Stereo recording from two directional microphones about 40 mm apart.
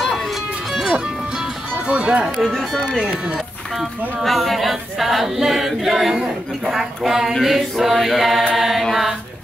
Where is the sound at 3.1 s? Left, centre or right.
Right.